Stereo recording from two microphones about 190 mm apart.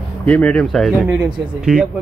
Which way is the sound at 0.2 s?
5° left (ahead or behind).